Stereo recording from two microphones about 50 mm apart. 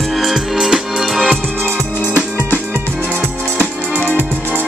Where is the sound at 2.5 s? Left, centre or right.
Right.